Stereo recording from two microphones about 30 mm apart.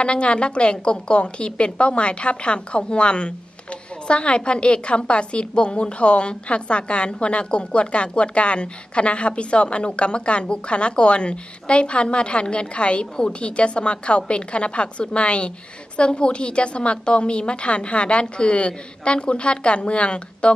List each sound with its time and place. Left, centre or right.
0.0 s a woman's voice: left